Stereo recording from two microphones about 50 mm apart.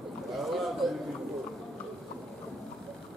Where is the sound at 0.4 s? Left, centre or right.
Centre.